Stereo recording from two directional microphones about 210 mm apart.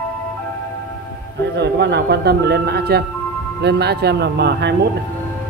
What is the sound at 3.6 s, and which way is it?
Speech, 55° right (ahead or behind).